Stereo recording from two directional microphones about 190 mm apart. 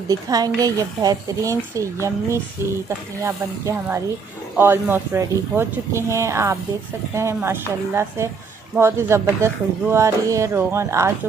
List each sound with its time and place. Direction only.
0.1 s speech: 20° right (ahead or behind)